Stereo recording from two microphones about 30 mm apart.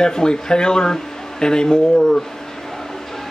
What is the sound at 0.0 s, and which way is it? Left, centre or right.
Speech, left.